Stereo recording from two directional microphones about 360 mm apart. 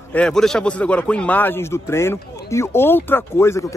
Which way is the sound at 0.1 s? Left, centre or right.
Centre.